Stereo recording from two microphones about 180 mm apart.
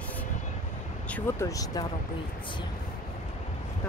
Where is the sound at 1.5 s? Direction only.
20° left (ahead or behind).